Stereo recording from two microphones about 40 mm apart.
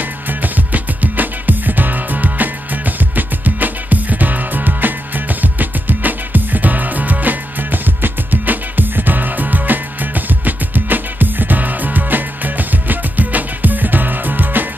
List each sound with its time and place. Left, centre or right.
0.3 s music: right